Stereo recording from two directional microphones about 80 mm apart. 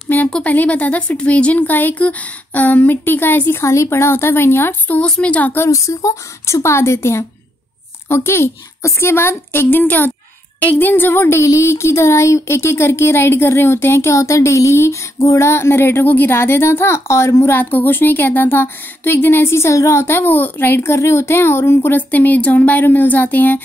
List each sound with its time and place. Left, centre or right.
0.3 s a woman's voice: centre
3.6 s a woman's voice: left; by 5.5 s centre
5.5 s a woman's voice: left